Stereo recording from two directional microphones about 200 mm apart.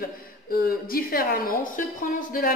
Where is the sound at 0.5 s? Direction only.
50° left (ahead or behind).